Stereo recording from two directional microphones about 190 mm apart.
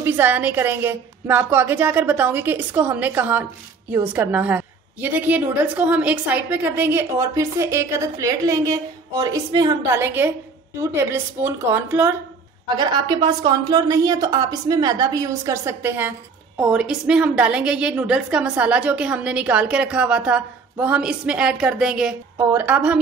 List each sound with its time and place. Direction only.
0.0 s a woman's voice: 10° right (ahead or behind)
12.7 s a woman's voice: 25° right (ahead or behind); by 22.9 s 10° right (ahead or behind)